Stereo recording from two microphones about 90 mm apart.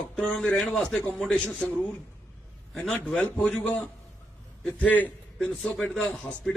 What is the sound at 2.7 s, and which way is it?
Speech, centre (ahead or behind).